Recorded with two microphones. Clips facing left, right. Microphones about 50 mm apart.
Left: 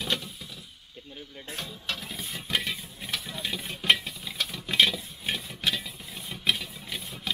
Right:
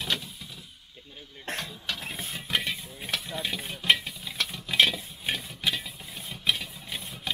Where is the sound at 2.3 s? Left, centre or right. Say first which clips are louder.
Even; centre.